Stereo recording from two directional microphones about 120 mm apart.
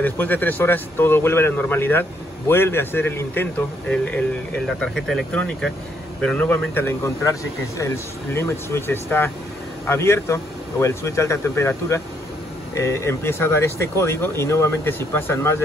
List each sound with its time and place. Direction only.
0.0 s speech: 15° left (ahead or behind)